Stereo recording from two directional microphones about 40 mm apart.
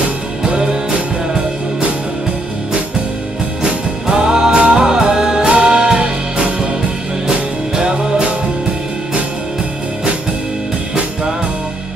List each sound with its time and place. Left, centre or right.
0.5 s music: right
3.6 s music: centre
7.7 s music: centre